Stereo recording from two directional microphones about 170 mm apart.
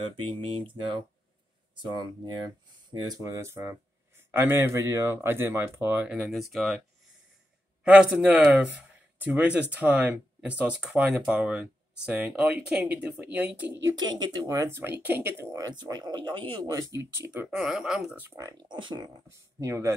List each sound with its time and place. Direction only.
0.1 s speech: 30° right (ahead or behind); by 6.8 s centre (ahead or behind)
7.8 s speech: 5° right (ahead or behind)
13.9 s speech: 25° right (ahead or behind)
18.6 s speech: 25° right (ahead or behind)